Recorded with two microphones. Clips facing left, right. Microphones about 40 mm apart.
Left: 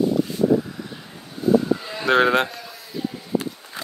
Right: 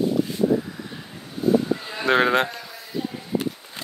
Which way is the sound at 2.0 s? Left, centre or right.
Centre.